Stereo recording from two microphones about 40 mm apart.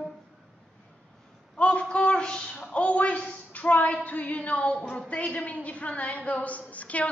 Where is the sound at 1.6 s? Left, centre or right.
Left.